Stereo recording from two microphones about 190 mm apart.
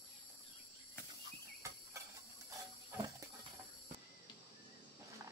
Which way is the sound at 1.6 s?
15° right (ahead or behind).